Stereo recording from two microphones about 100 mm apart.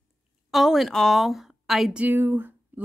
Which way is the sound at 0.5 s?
Centre (ahead or behind).